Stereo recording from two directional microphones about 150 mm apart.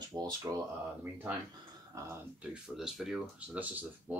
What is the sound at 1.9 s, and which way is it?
Speech, 20° right (ahead or behind).